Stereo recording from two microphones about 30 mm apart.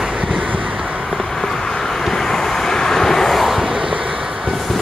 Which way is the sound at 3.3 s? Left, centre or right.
Centre.